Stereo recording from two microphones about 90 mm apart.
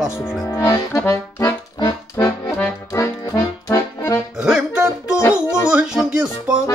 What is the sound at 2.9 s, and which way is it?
Accordion, 40° left (ahead or behind).